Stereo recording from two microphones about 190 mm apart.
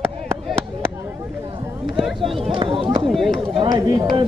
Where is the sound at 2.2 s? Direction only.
Centre (ahead or behind).